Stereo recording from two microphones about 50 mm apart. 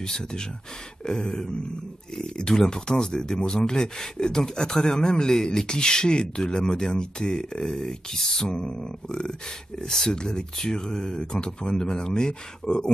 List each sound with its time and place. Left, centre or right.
0.0 s speech: centre